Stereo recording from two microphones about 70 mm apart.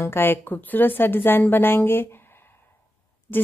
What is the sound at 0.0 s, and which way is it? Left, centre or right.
A woman's voice, left.